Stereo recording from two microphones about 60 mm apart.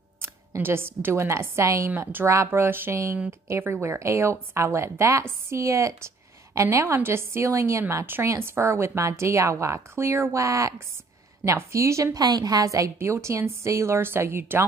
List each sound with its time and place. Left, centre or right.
0.6 s a woman's voice: right
3.8 s a woman's voice: right
7.4 s a woman's voice: right
8.0 s a woman's voice: right
13.0 s a woman's voice: right